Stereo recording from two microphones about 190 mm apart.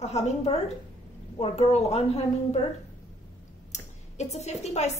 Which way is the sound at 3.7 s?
35° left (ahead or behind).